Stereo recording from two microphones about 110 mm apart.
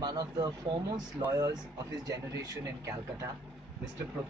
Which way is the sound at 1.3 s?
30° right (ahead or behind).